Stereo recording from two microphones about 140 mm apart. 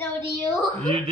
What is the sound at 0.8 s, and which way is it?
Speech, 45° right (ahead or behind).